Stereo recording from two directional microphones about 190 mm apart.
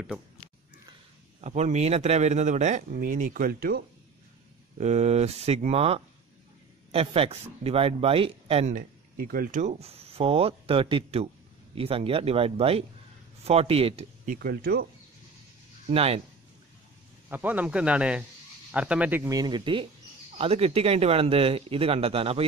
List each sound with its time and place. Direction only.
1.4 s speech: 35° right (ahead or behind); by 3.8 s 55° right (ahead or behind)
4.7 s speech: 35° right (ahead or behind)
14.3 s speech: 55° right (ahead or behind)
15.9 s speech: 30° right (ahead or behind)
17.3 s speech: 10° right (ahead or behind); by 22.4 s 30° right (ahead or behind)